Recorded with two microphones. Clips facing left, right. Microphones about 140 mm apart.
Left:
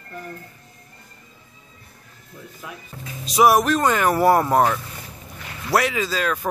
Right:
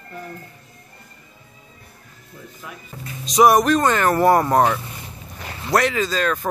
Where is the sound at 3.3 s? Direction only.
5° left (ahead or behind).